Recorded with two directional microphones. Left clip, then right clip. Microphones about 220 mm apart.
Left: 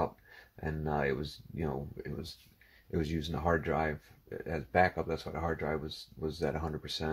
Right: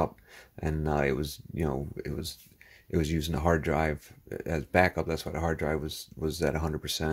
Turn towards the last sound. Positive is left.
turn(degrees=-45)  # may be behind; listen again after turning